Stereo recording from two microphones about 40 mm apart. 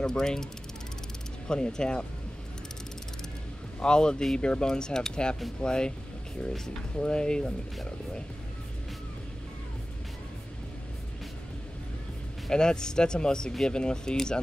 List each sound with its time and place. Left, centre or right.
0.0 s speech: centre
1.5 s speech: centre
3.8 s speech: left
7.0 s speech: left
12.4 s speech: centre